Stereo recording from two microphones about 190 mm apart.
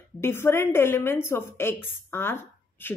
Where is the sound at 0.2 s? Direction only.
15° left (ahead or behind).